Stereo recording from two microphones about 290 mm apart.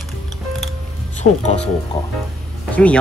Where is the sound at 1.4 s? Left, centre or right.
Left.